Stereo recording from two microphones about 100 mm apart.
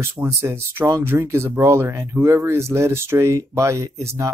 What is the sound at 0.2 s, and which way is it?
Speech, 25° right (ahead or behind).